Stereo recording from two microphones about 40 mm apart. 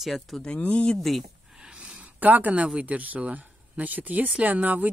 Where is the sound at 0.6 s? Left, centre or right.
Left.